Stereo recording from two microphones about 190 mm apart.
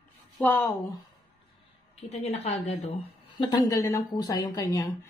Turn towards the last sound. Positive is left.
turn(degrees=20)  # may be behind; listen again after turning